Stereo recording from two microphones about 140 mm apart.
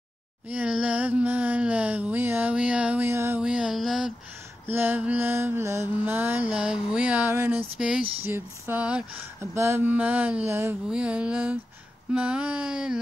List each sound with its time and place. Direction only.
0.5 s mantra: 10° right (ahead or behind)
3.4 s music: 5° right (ahead or behind)
4.6 s mantra: 15° right (ahead or behind)